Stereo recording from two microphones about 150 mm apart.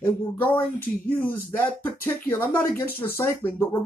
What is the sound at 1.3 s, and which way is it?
Speech, 10° left (ahead or behind).